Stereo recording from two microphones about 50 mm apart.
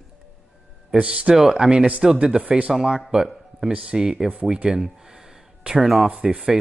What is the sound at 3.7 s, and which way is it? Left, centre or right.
Speech, right.